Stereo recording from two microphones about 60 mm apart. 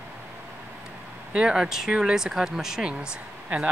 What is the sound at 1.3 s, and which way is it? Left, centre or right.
Speech, centre.